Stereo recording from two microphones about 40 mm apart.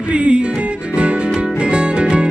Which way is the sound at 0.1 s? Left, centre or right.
Right.